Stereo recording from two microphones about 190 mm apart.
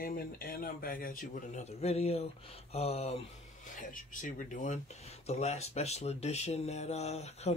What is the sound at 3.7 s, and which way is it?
Speech, 45° left (ahead or behind).